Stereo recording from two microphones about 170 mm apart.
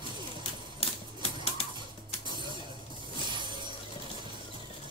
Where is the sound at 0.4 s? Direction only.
35° left (ahead or behind).